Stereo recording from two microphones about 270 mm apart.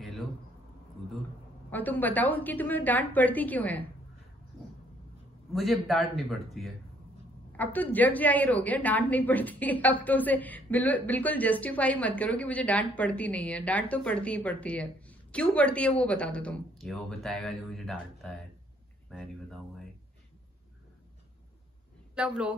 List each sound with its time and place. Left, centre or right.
1.7 s a woman's voice: centre
5.5 s a woman's voice: centre
22.1 s a woman's voice: centre